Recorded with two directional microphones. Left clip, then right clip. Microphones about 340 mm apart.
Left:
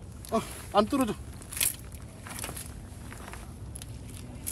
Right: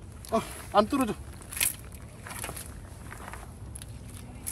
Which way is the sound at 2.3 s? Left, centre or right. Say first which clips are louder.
Right 1 dB; centre.